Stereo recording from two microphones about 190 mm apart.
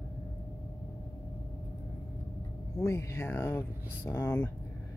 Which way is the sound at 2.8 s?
15° left (ahead or behind).